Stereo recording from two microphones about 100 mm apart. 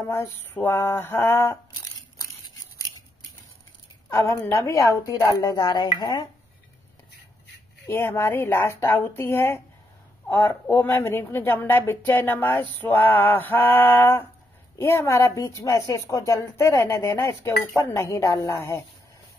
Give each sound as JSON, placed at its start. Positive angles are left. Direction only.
{"t": 0.1, "sound": "a woman's voice", "side_deg": 25}
{"t": 4.1, "sound": "a woman's voice", "side_deg": 30}
{"t": 7.8, "sound": "a woman's voice", "side_deg": 25}